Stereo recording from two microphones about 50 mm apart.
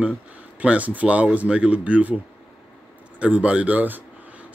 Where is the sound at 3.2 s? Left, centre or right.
Right.